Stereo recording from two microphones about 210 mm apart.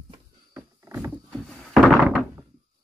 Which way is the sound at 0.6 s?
10° right (ahead or behind).